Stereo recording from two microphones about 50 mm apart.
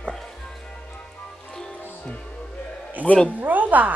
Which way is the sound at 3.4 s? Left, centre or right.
Right.